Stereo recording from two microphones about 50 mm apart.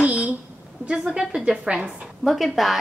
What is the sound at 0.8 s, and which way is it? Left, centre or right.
Speech, centre.